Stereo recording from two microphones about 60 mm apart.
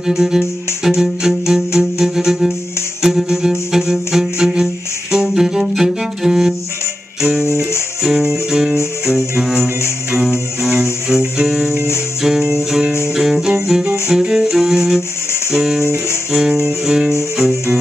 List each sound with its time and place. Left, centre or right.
0.0 s music: centre
7.2 s guitar: centre
8.0 s music: centre
15.8 s guitar: left
16.3 s music: centre